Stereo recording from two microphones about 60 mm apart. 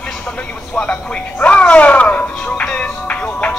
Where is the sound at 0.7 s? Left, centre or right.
Centre.